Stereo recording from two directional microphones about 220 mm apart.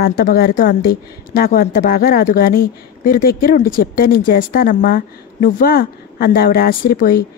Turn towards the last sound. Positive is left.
turn(degrees=40)  # may be behind; listen again after turning